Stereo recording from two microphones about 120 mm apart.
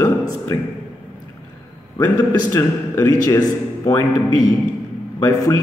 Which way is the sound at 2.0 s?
25° left (ahead or behind).